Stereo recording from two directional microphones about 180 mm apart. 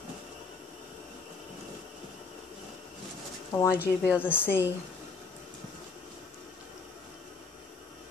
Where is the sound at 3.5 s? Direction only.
20° left (ahead or behind).